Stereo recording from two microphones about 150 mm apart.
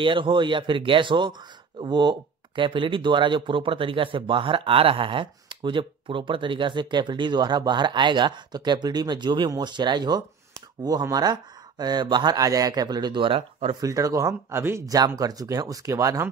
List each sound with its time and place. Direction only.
0.0 s speech: 35° right (ahead or behind)
13.7 s speech: 25° right (ahead or behind)